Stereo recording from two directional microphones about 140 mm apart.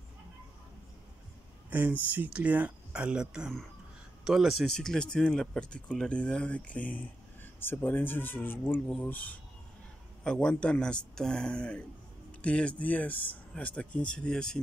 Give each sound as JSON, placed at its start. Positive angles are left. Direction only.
{"t": 1.7, "sound": "speech", "side_deg": -10}